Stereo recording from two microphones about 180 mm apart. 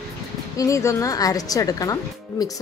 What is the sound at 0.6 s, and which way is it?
Speech, 15° left (ahead or behind).